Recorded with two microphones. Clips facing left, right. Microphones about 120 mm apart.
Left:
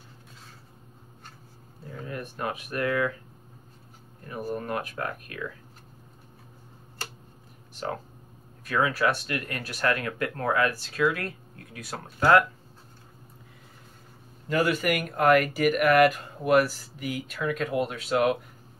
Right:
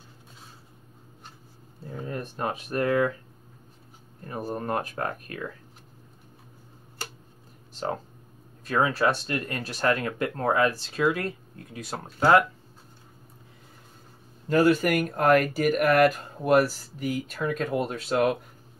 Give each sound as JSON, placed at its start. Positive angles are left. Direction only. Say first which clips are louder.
{"t": 1.9, "sound": "speech", "louder": "right 2 dB", "side_deg": -35}
{"t": 4.3, "sound": "speech", "louder": "right 1 dB", "side_deg": -35}
{"t": 7.7, "sound": "a sound", "louder": "right 2 dB", "side_deg": -25}
{"t": 8.6, "sound": "speech", "louder": "right 1 dB", "side_deg": -30}
{"t": 14.5, "sound": "speech", "louder": "right 4 dB", "side_deg": -35}